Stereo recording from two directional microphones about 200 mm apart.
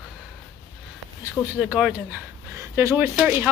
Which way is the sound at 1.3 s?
5° right (ahead or behind).